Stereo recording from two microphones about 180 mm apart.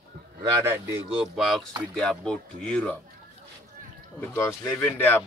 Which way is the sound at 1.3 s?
Centre (ahead or behind).